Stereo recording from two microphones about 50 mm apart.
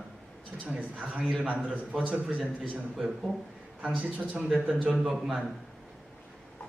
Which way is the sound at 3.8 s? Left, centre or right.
Right.